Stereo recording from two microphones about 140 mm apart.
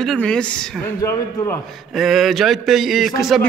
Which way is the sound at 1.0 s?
20° left (ahead or behind).